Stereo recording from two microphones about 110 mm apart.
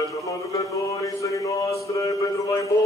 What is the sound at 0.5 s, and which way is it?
Mantra, 30° left (ahead or behind).